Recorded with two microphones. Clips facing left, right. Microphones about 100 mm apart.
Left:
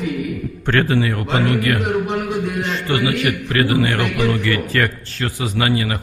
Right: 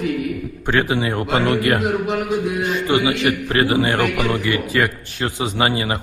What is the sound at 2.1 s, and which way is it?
A man's voice, 10° right (ahead or behind).